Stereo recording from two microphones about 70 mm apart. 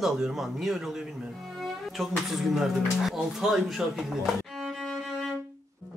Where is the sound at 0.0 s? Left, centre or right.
Centre.